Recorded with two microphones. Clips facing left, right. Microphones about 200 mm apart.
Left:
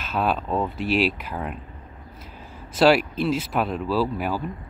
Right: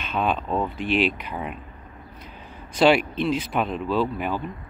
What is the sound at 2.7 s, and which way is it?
Speech, 5° left (ahead or behind).